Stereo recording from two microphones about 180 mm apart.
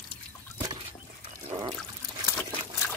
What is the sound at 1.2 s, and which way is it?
Dog, 30° right (ahead or behind).